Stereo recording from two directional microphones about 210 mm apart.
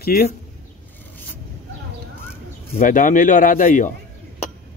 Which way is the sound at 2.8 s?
40° left (ahead or behind).